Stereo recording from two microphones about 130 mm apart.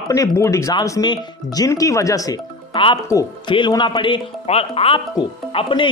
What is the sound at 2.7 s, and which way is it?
Speech, 40° left (ahead or behind).